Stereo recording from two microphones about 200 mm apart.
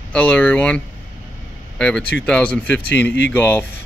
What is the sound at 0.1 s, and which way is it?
Speech, 5° left (ahead or behind).